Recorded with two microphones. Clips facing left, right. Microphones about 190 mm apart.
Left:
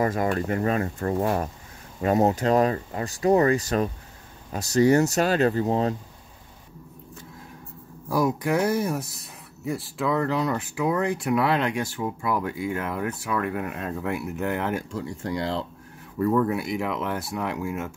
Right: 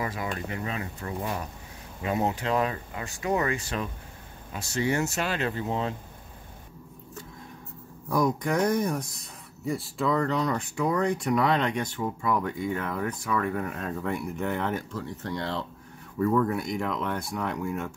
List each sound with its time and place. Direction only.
0.0 s speech: 50° left (ahead or behind)
8.1 s speech: 5° left (ahead or behind)